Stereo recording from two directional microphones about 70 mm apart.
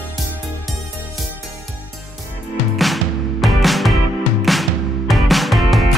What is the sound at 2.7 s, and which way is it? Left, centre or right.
Music, centre.